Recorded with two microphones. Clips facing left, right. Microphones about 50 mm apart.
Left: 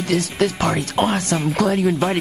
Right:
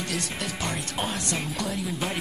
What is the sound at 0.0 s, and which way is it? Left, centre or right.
Speech, left.